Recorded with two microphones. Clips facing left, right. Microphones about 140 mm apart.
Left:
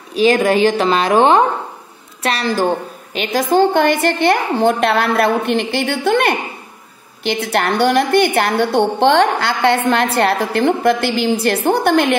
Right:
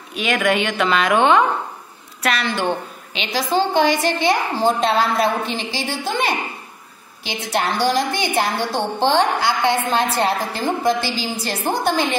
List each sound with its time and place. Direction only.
0.1 s a woman's voice: 35° left (ahead or behind); by 12.2 s 65° left (ahead or behind)